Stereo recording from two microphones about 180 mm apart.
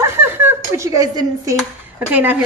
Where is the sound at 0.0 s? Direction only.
15° right (ahead or behind).